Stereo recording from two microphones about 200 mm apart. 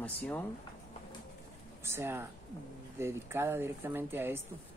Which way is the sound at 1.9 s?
10° right (ahead or behind).